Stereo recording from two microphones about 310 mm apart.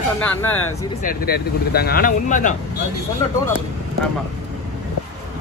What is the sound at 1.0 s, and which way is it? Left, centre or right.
Speech, left.